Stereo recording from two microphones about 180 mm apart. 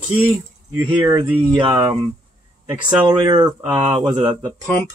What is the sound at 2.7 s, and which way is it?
Speech, 5° right (ahead or behind).